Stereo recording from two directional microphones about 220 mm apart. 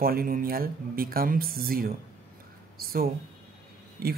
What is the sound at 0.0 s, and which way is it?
Speech, 40° right (ahead or behind).